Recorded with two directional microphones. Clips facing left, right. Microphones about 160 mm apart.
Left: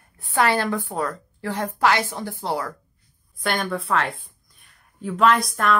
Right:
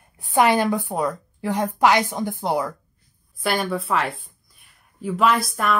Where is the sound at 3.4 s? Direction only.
5° right (ahead or behind).